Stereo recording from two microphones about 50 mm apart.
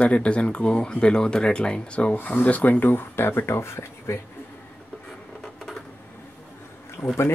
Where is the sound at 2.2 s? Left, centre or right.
Left.